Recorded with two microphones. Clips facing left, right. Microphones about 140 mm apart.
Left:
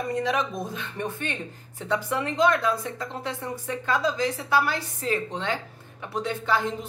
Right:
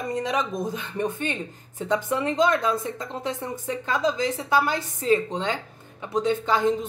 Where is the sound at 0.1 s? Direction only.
20° right (ahead or behind).